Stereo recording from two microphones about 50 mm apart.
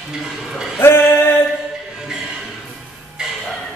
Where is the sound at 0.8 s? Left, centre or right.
Left.